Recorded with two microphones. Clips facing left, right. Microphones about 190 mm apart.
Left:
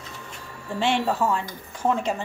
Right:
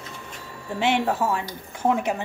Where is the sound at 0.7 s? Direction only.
15° right (ahead or behind).